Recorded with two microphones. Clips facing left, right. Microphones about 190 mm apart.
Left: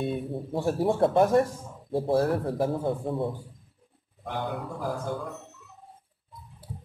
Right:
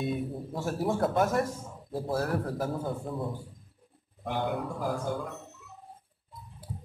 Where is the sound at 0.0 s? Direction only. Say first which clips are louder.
Left 2 dB; 30° left (ahead or behind).